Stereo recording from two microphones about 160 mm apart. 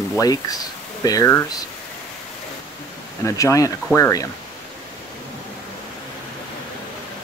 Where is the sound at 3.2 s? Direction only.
20° left (ahead or behind).